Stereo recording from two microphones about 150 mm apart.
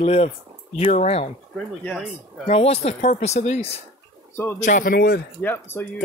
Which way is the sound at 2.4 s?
45° left (ahead or behind).